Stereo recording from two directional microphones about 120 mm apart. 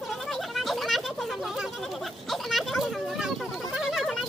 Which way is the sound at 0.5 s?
Centre (ahead or behind).